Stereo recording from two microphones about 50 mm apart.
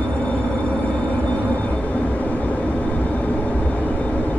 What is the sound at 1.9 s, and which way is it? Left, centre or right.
Vehicle, left.